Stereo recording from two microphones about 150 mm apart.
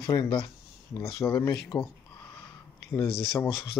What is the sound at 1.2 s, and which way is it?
Speech, 15° left (ahead or behind).